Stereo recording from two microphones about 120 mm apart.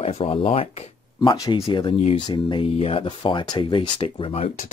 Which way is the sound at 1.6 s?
50° left (ahead or behind).